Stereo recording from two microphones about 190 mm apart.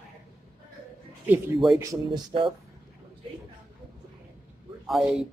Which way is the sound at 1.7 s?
20° right (ahead or behind).